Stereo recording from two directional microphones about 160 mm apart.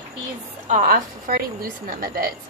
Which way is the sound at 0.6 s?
55° right (ahead or behind).